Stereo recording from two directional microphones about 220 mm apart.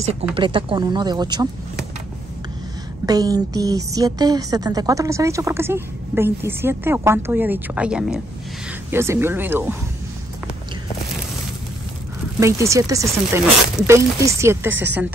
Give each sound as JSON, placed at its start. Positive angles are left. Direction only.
{"t": 0.0, "sound": "speech", "side_deg": -25}
{"t": 3.1, "sound": "a woman's voice", "side_deg": -15}
{"t": 12.4, "sound": "a woman's voice", "side_deg": -15}